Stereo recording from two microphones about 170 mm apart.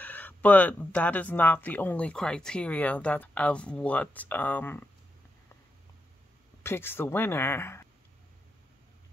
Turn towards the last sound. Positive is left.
turn(degrees=15)  # may be behind; listen again after turning